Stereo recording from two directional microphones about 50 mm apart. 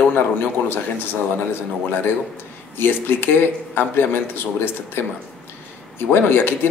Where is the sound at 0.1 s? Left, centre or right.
Left.